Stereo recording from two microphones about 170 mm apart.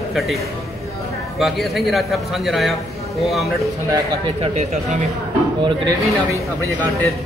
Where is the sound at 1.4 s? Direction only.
Centre (ahead or behind).